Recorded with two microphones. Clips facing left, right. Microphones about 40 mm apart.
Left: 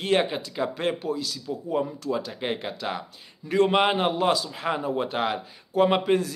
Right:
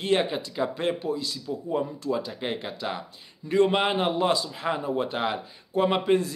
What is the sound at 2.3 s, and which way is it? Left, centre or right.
Speech, left.